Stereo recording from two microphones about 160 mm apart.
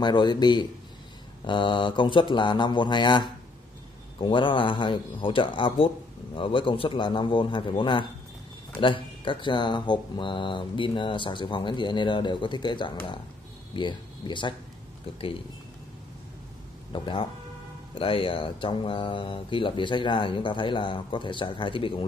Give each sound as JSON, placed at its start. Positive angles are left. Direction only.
{"t": 0.0, "sound": "speech", "side_deg": 30}
{"t": 16.9, "sound": "speech", "side_deg": 30}